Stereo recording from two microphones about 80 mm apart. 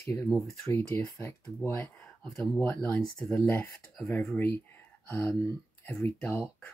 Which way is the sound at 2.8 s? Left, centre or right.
Centre.